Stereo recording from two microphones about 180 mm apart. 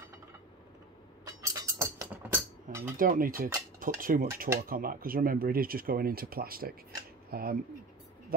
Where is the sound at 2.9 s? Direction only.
50° right (ahead or behind).